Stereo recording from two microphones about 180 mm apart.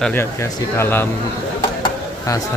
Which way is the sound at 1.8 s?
20° left (ahead or behind).